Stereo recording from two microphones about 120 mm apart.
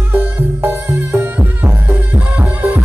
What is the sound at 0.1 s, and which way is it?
Music, 15° right (ahead or behind).